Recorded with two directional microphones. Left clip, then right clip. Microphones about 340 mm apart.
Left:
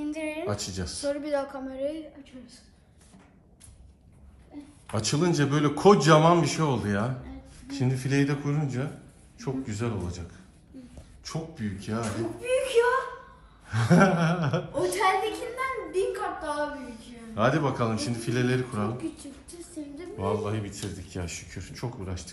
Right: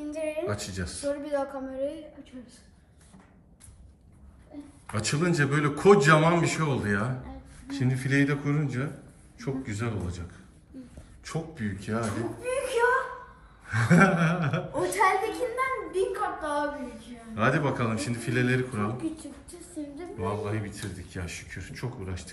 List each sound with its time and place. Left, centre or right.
0.0 s a woman's voice: centre
1.8 s a woman's voice: left
4.9 s a man's voice: centre
13.7 s a man's voice: centre
15.3 s a woman's voice: centre
17.3 s a man's voice: centre